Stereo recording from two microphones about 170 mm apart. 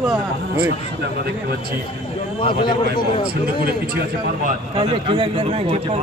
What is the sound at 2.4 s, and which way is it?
Speech, 30° left (ahead or behind).